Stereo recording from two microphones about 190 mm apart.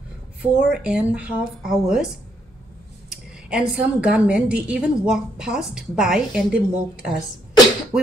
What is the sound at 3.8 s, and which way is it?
A woman's voice, 5° right (ahead or behind).